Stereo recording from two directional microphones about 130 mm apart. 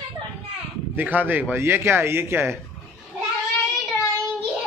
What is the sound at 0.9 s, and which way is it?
Speech, 15° right (ahead or behind).